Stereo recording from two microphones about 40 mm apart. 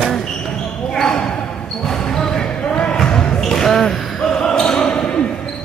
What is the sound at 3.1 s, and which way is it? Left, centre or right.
Basketball bounce, left.